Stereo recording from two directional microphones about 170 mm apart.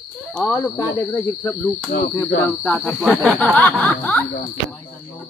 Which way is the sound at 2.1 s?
10° left (ahead or behind).